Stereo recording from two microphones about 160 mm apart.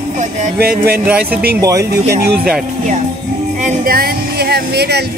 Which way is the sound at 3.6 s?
50° right (ahead or behind).